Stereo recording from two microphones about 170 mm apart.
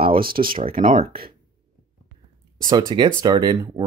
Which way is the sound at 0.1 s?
60° right (ahead or behind).